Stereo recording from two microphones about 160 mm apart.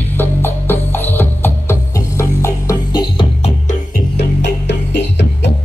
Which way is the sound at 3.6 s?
75° left (ahead or behind).